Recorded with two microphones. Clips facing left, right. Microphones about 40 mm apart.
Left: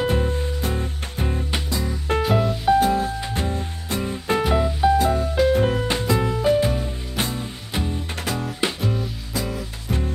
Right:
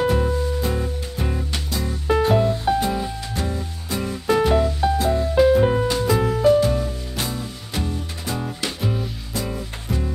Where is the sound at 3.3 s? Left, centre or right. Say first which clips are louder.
Left 1 dB; left.